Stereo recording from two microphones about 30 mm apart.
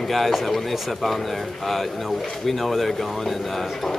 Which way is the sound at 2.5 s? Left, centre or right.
Centre.